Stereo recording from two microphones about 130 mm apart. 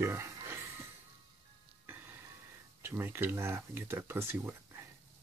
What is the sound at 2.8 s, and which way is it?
Speech, 15° right (ahead or behind).